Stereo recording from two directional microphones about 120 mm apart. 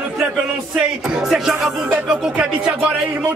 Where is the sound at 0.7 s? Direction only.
5° right (ahead or behind).